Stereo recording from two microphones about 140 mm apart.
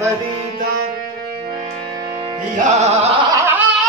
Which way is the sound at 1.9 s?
30° right (ahead or behind).